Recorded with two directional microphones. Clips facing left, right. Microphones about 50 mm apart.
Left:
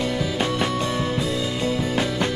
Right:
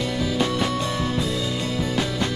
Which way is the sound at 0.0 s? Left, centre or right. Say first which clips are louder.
Even; left.